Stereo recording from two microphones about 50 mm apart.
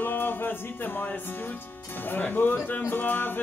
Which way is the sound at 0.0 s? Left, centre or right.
Left.